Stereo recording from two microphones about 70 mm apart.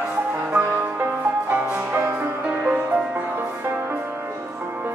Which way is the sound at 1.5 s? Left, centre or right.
Right.